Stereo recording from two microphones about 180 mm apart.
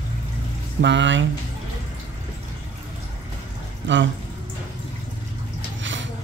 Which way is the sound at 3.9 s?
90° right.